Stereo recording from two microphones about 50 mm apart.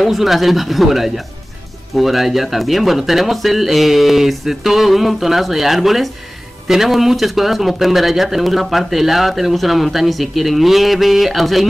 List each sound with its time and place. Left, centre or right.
0.0 s speech: centre